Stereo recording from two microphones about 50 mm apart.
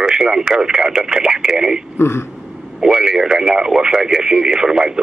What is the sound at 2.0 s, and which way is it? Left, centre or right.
Speech, left.